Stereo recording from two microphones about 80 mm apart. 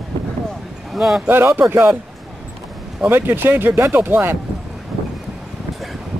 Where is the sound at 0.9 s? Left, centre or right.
Centre.